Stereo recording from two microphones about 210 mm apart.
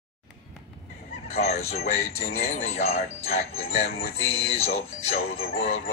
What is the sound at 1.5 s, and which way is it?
Speech, 30° left (ahead or behind).